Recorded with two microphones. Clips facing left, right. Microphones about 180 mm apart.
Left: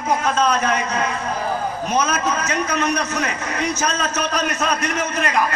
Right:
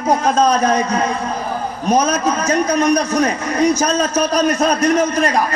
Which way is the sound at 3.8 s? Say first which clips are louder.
Right 6 dB; 35° right (ahead or behind).